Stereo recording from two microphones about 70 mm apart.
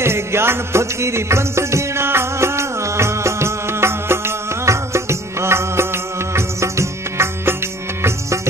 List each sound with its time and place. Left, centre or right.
0.0 s music: right